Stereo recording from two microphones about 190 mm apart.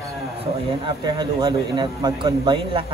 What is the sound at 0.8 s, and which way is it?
A man's voice, 25° right (ahead or behind).